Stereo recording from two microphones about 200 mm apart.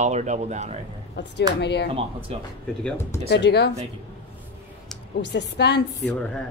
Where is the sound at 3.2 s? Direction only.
60° left (ahead or behind).